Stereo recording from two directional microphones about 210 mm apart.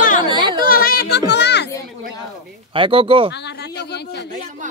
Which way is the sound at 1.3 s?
55° left (ahead or behind).